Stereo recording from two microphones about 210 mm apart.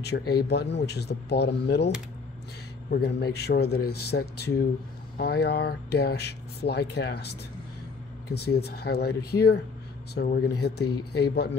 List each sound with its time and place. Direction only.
0.0 s speech: 50° left (ahead or behind)
2.9 s speech: 50° left (ahead or behind)
10.9 s speech: 90° left